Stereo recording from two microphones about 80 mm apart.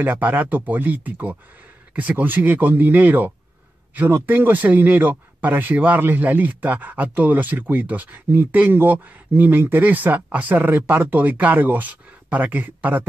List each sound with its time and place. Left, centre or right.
0.0 s speech: right